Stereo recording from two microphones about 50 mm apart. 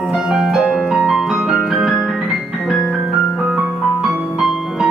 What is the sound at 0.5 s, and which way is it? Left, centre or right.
Piano, centre.